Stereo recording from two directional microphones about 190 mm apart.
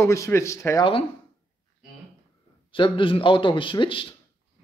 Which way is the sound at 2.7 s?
25° left (ahead or behind).